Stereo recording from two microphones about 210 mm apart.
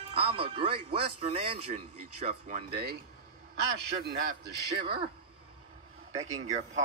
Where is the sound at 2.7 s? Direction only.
50° right (ahead or behind).